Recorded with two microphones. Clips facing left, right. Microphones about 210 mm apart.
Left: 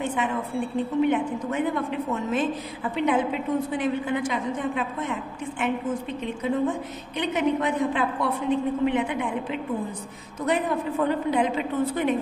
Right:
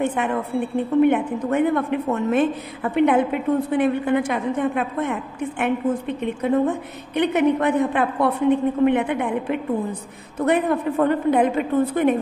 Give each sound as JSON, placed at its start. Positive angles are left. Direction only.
{"t": 0.0, "sound": "a woman's voice", "side_deg": -60}